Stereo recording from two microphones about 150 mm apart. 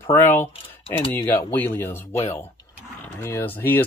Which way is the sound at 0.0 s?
15° left (ahead or behind).